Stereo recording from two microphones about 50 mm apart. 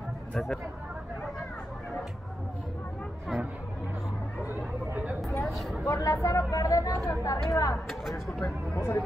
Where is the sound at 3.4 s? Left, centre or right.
Right.